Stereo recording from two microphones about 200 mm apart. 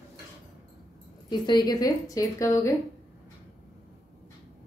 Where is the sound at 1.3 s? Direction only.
20° left (ahead or behind).